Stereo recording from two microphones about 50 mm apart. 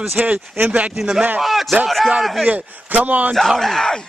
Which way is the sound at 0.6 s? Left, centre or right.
Right.